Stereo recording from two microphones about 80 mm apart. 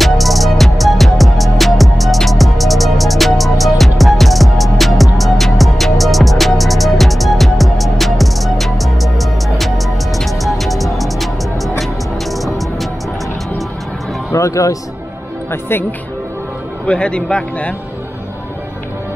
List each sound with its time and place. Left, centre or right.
0.0 s music: centre
14.3 s speech: left
16.8 s a man's voice: centre